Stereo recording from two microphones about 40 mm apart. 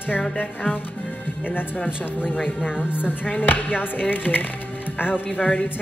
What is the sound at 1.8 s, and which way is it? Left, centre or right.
Speech, centre.